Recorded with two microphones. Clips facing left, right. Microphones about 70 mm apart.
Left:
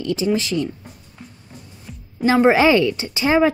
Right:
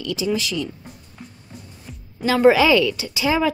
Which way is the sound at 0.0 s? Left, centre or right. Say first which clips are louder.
Left 3 dB; left.